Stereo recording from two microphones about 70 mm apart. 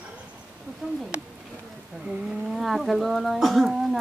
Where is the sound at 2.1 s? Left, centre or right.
Centre.